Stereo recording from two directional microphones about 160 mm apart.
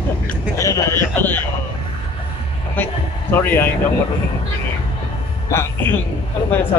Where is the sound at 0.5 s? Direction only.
20° left (ahead or behind).